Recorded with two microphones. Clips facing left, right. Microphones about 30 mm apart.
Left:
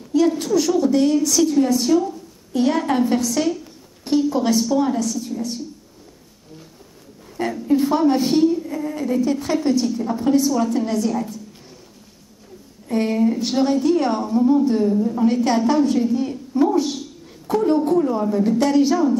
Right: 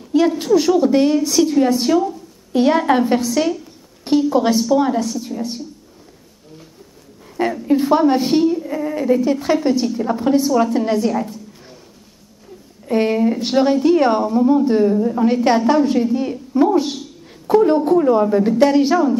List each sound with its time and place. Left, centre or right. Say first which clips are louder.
0.3 s a woman's voice: right 4 dB; centre
7.3 s a woman's voice: right 2 dB; right
12.8 s a woman's voice: right 3 dB; right